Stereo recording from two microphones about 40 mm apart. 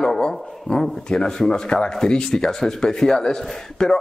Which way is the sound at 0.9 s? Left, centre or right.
Centre.